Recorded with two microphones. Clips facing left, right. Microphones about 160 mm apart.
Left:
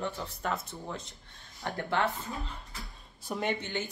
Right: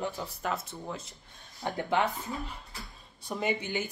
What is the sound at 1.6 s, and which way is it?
Speech, 15° right (ahead or behind).